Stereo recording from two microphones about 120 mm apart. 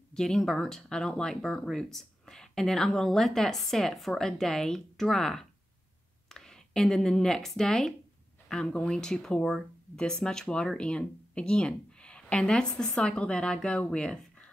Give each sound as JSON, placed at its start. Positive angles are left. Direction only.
{"t": 0.1, "sound": "speech", "side_deg": 5}